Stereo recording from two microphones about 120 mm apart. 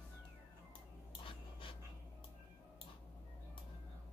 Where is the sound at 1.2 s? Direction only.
45° left (ahead or behind).